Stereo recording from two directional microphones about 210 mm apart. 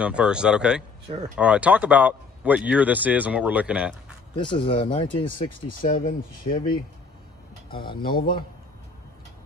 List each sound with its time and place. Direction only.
0.0 s speech: 5° right (ahead or behind)
4.4 s speech: 25° left (ahead or behind)
5.7 s speech: 40° left (ahead or behind)
6.0 s speech: 25° left (ahead or behind)
8.0 s a man's voice: 45° left (ahead or behind)